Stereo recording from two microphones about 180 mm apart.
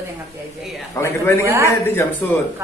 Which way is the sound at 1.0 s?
15° left (ahead or behind).